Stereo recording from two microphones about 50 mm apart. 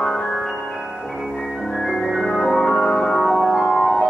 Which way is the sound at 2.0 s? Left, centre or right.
Centre.